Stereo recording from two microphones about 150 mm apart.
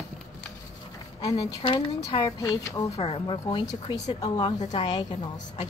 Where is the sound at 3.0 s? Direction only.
35° left (ahead or behind).